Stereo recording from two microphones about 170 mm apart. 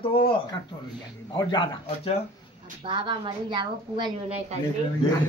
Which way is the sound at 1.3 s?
25° left (ahead or behind).